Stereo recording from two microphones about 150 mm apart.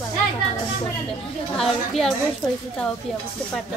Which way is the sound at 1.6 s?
Centre (ahead or behind).